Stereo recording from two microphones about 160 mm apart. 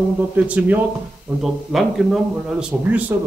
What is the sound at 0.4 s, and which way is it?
Speech, 10° right (ahead or behind).